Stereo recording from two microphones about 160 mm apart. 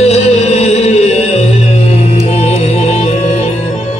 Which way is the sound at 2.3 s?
40° left (ahead or behind).